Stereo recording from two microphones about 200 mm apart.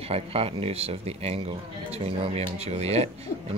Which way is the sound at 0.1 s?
30° right (ahead or behind).